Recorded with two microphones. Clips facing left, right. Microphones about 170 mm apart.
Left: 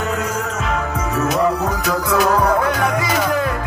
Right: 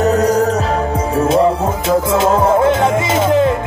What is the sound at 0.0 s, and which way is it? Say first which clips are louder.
Music: right 10 dB; 40° right (ahead or behind).